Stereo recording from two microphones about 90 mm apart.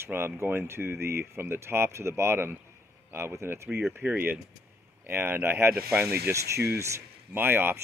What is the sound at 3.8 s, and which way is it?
Speech, 20° right (ahead or behind).